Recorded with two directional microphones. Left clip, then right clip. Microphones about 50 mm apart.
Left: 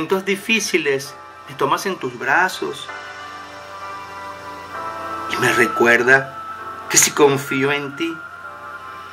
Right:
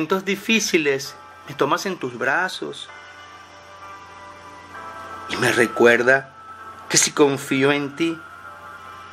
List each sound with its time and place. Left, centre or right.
0.0 s speech: right
4.7 s music: left
5.3 s speech: right